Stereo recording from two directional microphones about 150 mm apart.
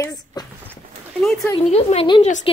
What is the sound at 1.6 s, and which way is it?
Speech, 45° left (ahead or behind).